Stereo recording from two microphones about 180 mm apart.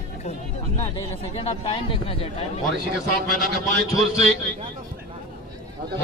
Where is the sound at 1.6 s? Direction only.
30° left (ahead or behind).